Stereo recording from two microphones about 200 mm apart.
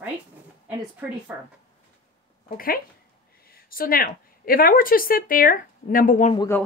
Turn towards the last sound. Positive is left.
turn(degrees=10)  # may be behind; listen again after turning